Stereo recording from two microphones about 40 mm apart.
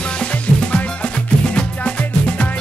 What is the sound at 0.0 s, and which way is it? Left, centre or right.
Music, left.